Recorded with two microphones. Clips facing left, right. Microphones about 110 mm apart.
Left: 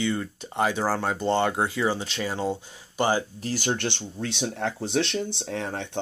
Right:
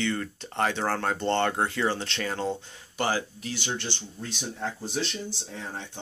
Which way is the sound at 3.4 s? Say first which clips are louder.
Left 6 dB; 45° left (ahead or behind).